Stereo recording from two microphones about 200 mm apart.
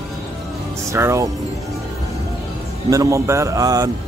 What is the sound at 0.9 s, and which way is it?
Speech, 15° right (ahead or behind).